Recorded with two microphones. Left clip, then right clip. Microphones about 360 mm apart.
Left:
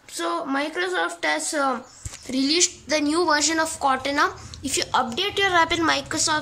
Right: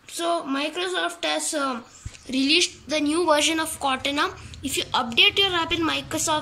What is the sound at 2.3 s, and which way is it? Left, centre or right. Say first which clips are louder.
Speech: right 2 dB; centre.